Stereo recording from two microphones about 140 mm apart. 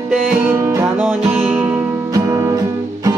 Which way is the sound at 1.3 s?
15° right (ahead or behind).